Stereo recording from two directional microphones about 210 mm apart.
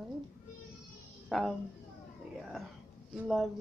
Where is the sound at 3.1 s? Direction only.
Centre (ahead or behind).